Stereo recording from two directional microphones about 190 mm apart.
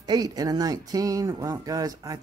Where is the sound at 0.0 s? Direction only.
20° right (ahead or behind).